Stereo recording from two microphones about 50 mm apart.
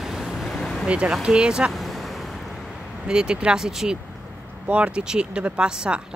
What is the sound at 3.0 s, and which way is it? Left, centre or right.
Speech, centre.